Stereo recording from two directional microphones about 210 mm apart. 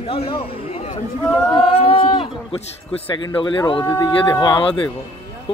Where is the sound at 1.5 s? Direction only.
25° left (ahead or behind).